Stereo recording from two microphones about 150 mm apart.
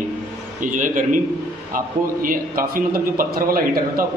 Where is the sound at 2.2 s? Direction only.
70° right (ahead or behind).